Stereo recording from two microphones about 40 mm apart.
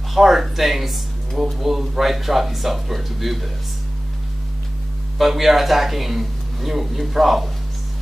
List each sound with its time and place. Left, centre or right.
0.1 s speech: centre
5.2 s speech: centre